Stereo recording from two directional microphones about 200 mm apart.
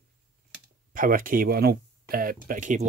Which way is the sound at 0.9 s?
45° right (ahead or behind).